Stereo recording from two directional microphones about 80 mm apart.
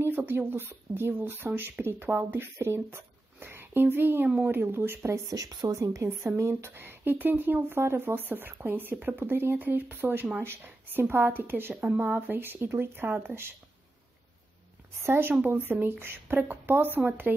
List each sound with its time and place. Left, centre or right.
0.0 s a woman's voice: right
5.3 s a woman's voice: right
15.0 s a woman's voice: right